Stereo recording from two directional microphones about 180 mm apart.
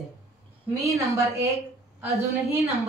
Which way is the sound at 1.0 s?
15° right (ahead or behind).